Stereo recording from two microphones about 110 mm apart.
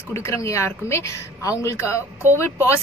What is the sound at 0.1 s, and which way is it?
A woman's voice, 25° left (ahead or behind).